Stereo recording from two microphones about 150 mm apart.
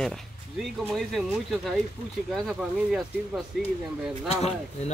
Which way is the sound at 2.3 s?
Centre (ahead or behind).